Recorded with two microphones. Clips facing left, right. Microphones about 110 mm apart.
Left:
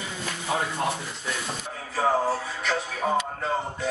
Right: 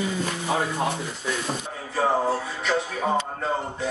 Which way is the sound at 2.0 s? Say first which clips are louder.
Right 1 dB; centre (ahead or behind).